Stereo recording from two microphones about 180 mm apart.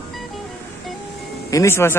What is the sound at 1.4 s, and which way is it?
Speech, 15° left (ahead or behind).